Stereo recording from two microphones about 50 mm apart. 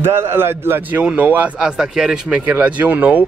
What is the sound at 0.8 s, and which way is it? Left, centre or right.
Speech, right.